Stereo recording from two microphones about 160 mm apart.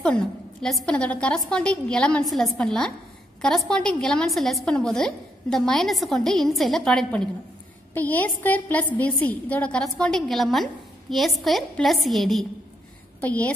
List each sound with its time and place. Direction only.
0.0 s a woman's voice: 5° left (ahead or behind)